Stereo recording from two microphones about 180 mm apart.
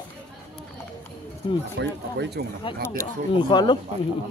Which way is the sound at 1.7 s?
70° right (ahead or behind).